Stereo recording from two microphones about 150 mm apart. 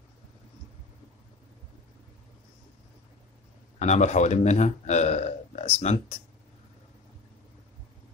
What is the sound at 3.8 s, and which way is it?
Speech, 50° left (ahead or behind).